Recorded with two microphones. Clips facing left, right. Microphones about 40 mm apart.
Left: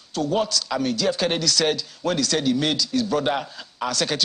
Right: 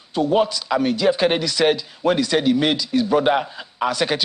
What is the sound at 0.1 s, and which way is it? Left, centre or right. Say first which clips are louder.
A man's voice: right 5 dB; right.